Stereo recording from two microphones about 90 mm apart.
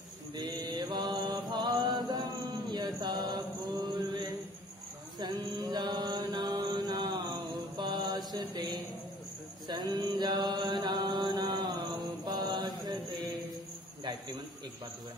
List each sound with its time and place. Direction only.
0.4 s mantra: 60° right (ahead or behind)
3.8 s male singing: 45° right (ahead or behind)
5.2 s music: 55° right (ahead or behind)
5.6 s mantra: 55° right (ahead or behind)
9.7 s a sound: 50° right (ahead or behind)
10.0 s mantra: 55° right (ahead or behind)